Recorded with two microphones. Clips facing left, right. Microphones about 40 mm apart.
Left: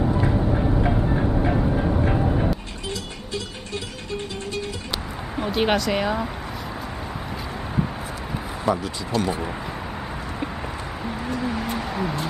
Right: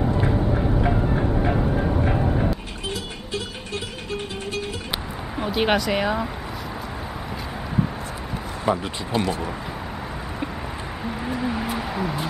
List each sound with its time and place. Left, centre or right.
0.2 s vehicle: centre
5.3 s speech: centre
8.6 s speech: centre
11.2 s a sound: centre